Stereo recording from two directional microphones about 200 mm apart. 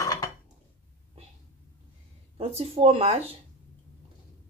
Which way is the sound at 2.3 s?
30° right (ahead or behind).